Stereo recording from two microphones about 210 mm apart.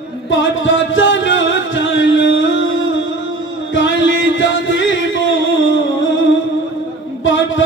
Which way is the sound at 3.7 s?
60° left (ahead or behind).